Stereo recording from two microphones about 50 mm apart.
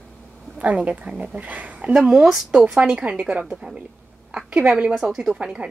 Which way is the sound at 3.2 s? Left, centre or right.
Right.